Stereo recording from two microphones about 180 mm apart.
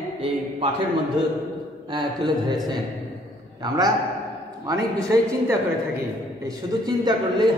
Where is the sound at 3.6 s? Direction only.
20° right (ahead or behind).